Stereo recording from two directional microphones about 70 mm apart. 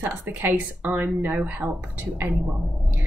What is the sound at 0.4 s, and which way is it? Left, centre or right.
A woman's voice, right.